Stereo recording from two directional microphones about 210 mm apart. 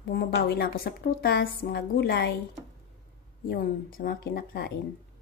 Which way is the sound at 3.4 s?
45° left (ahead or behind).